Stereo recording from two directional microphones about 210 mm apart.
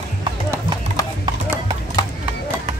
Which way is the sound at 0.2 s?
20° right (ahead or behind).